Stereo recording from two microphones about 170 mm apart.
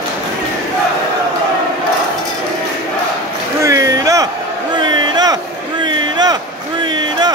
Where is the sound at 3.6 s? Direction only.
20° right (ahead or behind).